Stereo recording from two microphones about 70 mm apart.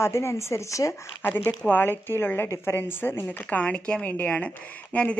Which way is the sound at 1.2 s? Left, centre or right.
Left.